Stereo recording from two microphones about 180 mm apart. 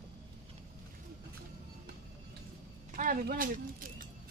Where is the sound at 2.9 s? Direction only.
50° right (ahead or behind).